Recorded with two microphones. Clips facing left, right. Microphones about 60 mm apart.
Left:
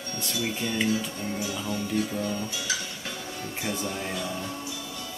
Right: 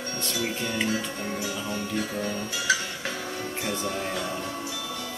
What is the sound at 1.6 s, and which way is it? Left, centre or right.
Speech, right.